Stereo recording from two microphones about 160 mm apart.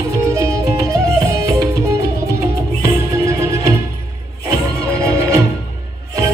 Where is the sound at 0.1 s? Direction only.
20° right (ahead or behind).